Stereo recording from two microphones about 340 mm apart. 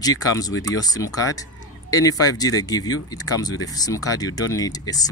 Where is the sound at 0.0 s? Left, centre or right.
Centre.